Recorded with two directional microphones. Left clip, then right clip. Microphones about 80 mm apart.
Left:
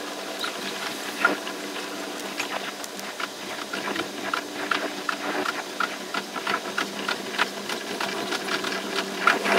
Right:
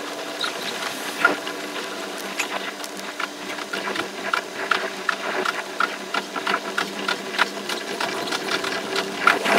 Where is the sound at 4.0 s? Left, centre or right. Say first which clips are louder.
Right 4 dB; right.